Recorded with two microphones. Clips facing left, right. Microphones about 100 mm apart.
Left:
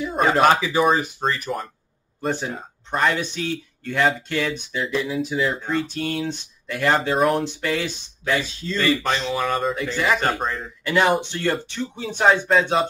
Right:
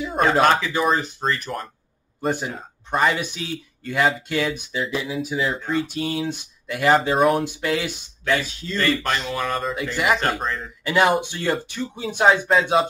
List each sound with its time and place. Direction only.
0.1 s speech: 5° left (ahead or behind)
2.2 s speech: 10° right (ahead or behind)
8.6 s speech: centre (ahead or behind)
9.8 s speech: 10° right (ahead or behind)
10.4 s speech: 5° left (ahead or behind)
10.9 s speech: 10° right (ahead or behind)